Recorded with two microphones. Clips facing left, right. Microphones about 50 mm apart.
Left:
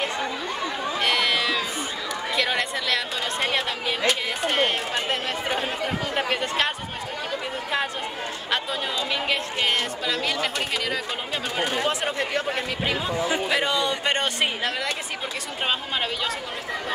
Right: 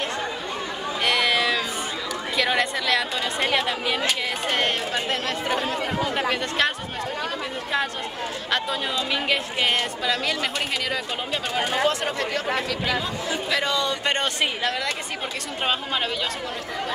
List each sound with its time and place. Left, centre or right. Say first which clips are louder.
1.0 s a sound: right 2 dB; centre
2.3 s a woman's voice: right 3 dB; centre
6.3 s speech: right 1 dB; centre
9.1 s a woman's voice: right 2 dB; centre
11.9 s speech: even; centre